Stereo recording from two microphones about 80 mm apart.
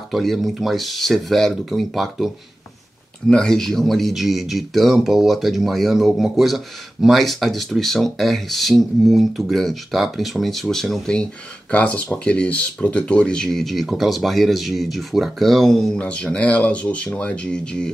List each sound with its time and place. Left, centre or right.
0.1 s speech: centre